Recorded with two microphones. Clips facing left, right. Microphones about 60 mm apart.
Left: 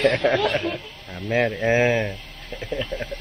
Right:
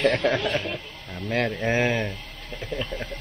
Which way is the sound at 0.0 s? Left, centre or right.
Centre.